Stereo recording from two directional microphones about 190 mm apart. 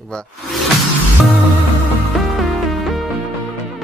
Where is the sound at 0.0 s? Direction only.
5° left (ahead or behind).